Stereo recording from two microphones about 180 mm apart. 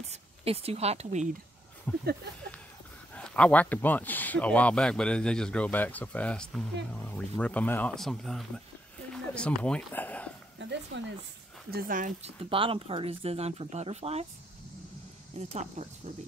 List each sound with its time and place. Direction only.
0.1 s speech: 35° right (ahead or behind)
1.9 s speech: 10° left (ahead or behind)
3.2 s speech: 5° left (ahead or behind)
9.1 s a sound: 5° left (ahead or behind)
9.6 s speech: 5° left (ahead or behind)
10.6 s a sound: 80° right
11.7 s speech: 50° right (ahead or behind)
12.4 s speech: 30° right (ahead or behind)
15.3 s speech: 40° right (ahead or behind)